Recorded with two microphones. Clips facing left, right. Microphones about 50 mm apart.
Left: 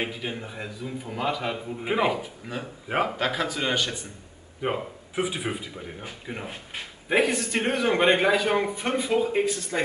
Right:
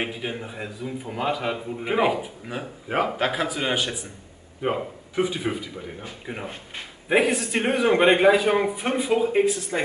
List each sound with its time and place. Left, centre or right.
0.0 s a man's voice: centre
4.6 s a man's voice: centre
6.2 s a man's voice: centre